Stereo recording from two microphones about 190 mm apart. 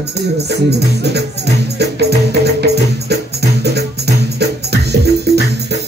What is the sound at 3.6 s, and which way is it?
Music, 60° right (ahead or behind).